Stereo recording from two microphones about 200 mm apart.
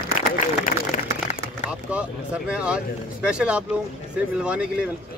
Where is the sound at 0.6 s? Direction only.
45° left (ahead or behind).